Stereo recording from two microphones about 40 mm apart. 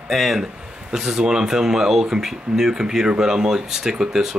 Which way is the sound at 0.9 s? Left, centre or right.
Centre.